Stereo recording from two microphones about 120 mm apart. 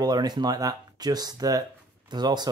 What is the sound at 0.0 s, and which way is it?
Speech, 35° right (ahead or behind).